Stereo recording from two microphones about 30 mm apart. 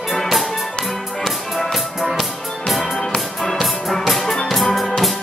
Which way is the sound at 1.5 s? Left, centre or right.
Centre.